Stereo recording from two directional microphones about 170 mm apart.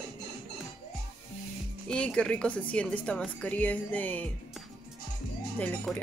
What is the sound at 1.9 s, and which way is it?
A woman's voice, 5° left (ahead or behind).